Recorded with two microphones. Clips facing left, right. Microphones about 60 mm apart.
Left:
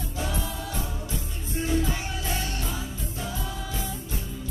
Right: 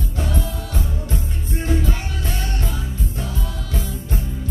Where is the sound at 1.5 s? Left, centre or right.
Right.